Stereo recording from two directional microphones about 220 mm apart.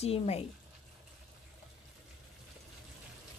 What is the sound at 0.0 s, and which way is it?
Speech, 30° left (ahead or behind).